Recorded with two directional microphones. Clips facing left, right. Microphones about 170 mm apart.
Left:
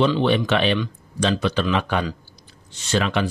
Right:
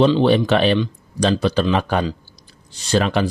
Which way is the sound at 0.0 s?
35° right (ahead or behind).